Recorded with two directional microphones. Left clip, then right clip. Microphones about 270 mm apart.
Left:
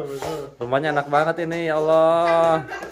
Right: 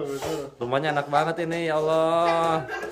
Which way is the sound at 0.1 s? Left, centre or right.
Centre.